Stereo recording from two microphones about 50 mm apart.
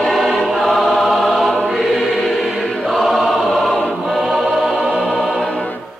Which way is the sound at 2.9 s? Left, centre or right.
Centre.